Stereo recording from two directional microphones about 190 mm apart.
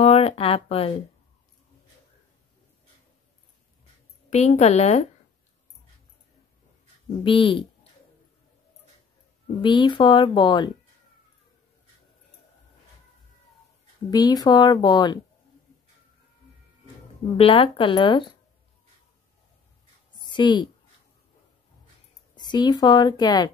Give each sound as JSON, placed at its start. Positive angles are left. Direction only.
{"t": 0.0, "sound": "speech", "side_deg": 35}
{"t": 4.3, "sound": "a woman's voice", "side_deg": 35}
{"t": 7.2, "sound": "speech", "side_deg": 25}
{"t": 9.6, "sound": "speech", "side_deg": 25}
{"t": 14.1, "sound": "speech", "side_deg": 20}
{"t": 17.4, "sound": "speech", "side_deg": 30}
{"t": 20.2, "sound": "a sound", "side_deg": 25}
{"t": 22.3, "sound": "a woman's voice", "side_deg": 25}